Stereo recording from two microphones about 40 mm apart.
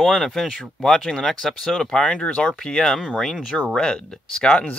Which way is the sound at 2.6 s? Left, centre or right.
Centre.